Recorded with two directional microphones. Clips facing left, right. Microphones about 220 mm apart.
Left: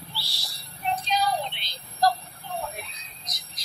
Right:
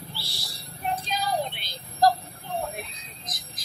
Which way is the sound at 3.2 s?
50° right (ahead or behind).